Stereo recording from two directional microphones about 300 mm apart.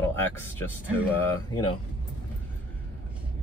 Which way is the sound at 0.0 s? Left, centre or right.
Centre.